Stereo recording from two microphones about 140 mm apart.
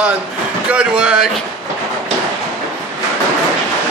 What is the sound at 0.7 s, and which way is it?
Speech, 5° right (ahead or behind).